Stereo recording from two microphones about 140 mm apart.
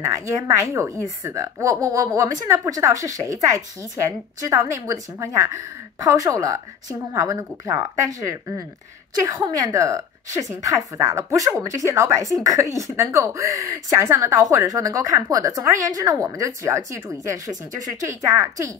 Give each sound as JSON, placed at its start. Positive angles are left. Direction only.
{"t": 0.0, "sound": "speech", "side_deg": -20}